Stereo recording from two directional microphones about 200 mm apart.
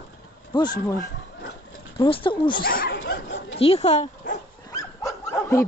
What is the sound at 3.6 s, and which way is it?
Speech, 30° left (ahead or behind).